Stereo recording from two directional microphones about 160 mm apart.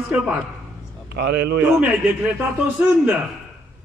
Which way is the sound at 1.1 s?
90° right.